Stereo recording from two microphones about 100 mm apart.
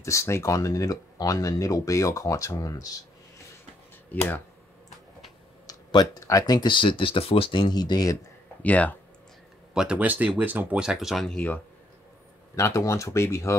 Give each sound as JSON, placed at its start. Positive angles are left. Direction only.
{"t": 0.0, "sound": "speech", "side_deg": 30}
{"t": 4.1, "sound": "speech", "side_deg": 20}
{"t": 5.7, "sound": "a sound", "side_deg": 40}
{"t": 6.2, "sound": "speech", "side_deg": 40}
{"t": 8.6, "sound": "speech", "side_deg": 15}
{"t": 9.8, "sound": "speech", "side_deg": -10}
{"t": 11.2, "sound": "speech", "side_deg": 15}
{"t": 12.5, "sound": "speech", "side_deg": 30}